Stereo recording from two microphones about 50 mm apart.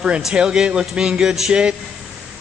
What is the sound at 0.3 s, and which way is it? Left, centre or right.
A man's voice, centre.